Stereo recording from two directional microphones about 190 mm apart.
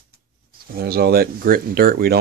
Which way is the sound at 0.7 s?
55° right (ahead or behind).